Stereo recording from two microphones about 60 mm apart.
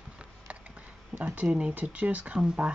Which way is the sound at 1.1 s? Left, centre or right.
Right.